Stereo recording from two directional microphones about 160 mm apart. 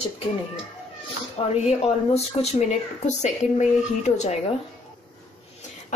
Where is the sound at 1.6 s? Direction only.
40° left (ahead or behind).